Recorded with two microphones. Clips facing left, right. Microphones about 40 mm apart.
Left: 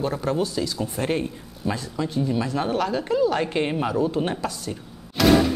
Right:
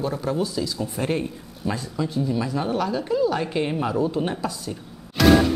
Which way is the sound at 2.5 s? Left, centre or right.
Left.